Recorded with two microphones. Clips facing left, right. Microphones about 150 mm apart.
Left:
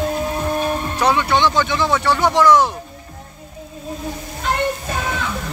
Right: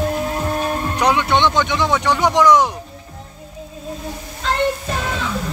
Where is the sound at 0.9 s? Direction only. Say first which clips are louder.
Right 1 dB; 15° right (ahead or behind).